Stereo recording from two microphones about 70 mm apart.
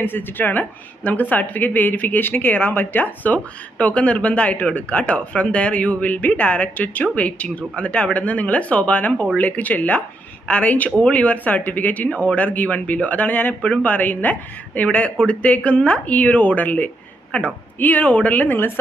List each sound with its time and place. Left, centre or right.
0.0 s speech: left
13.6 s speech: centre
13.9 s speech: left